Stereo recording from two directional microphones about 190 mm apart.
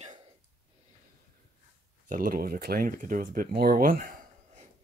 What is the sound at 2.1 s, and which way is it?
Speech, 45° right (ahead or behind).